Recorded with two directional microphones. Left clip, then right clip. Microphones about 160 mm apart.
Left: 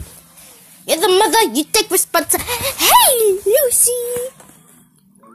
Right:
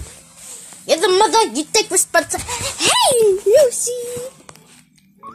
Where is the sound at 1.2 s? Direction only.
50° left (ahead or behind).